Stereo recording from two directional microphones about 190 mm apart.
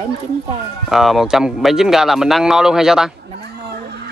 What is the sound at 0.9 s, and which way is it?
Speech, centre (ahead or behind).